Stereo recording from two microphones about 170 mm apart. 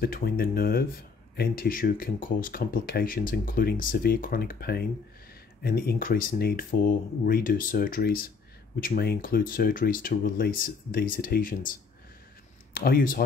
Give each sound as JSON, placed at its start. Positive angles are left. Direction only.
{"t": 0.0, "sound": "speech", "side_deg": 60}
{"t": 12.7, "sound": "speech", "side_deg": 60}